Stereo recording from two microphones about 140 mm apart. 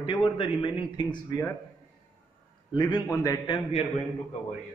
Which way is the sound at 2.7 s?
30° left (ahead or behind).